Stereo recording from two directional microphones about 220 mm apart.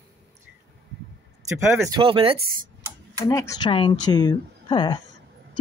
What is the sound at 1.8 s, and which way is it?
Speech, 20° right (ahead or behind).